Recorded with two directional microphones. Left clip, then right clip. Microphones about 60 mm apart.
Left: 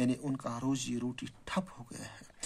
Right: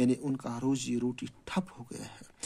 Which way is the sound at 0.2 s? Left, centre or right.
Right.